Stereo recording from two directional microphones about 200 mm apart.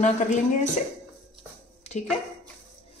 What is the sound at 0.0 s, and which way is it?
Speech, 35° left (ahead or behind).